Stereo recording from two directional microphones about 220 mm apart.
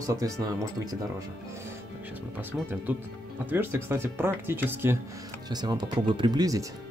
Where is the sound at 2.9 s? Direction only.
10° right (ahead or behind).